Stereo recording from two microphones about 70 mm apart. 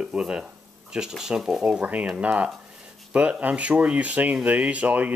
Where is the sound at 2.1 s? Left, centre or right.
Right.